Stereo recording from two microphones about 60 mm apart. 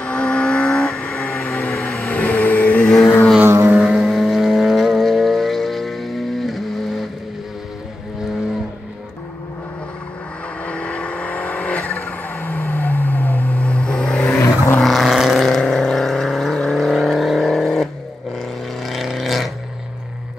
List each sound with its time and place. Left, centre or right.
0.0 s vehicle: centre
1.6 s vehicle: left
3.4 s vehicle: right
3.7 s vehicle: centre
10.6 s vehicle: centre
12.0 s a sound: left; by 14.2 s centre
14.2 s vehicle: left
14.8 s vehicle: centre